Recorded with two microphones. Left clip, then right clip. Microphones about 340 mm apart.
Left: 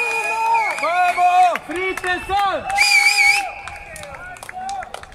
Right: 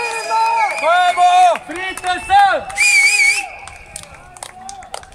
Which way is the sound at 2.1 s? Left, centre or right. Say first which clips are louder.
Right 9 dB; right.